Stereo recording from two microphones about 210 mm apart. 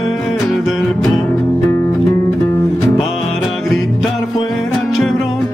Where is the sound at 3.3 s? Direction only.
Centre (ahead or behind).